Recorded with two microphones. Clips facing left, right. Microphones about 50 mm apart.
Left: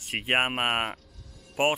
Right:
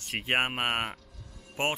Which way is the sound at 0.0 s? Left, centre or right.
Centre.